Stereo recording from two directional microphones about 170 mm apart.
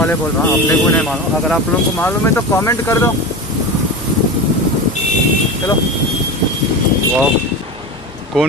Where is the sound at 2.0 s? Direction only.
15° left (ahead or behind).